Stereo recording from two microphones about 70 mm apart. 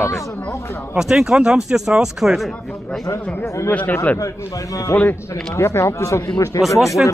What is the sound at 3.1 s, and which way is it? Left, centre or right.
A man's voice, left.